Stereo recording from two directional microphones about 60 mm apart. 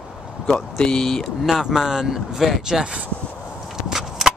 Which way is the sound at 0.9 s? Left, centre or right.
Centre.